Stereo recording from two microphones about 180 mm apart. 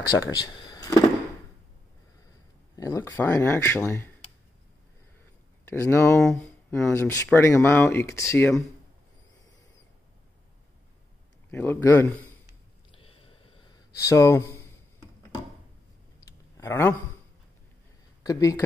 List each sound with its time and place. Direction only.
0.3 s speech: 20° left (ahead or behind)
2.7 s speech: 20° left (ahead or behind)
5.7 s speech: 15° left (ahead or behind)
11.5 s speech: 10° left (ahead or behind)
12.9 s a sound: 30° left (ahead or behind)
13.9 s speech: 15° left (ahead or behind)
16.5 s speech: 15° left (ahead or behind)
18.2 s speech: 20° left (ahead or behind)